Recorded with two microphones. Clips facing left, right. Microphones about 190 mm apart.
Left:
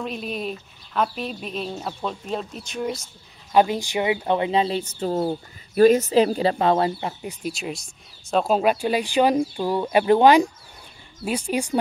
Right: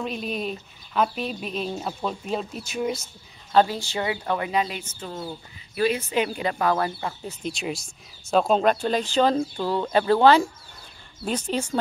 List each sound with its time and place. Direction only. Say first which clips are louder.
0.0 s speech: even; centre (ahead or behind)
3.5 s speech: left 2 dB; 15° left (ahead or behind); by 5.2 s 35° left (ahead or behind)
5.2 s speech: left 10 dB; 50° left (ahead or behind); by 7.3 s 20° left (ahead or behind)
7.4 s speech: right 1 dB; centre (ahead or behind)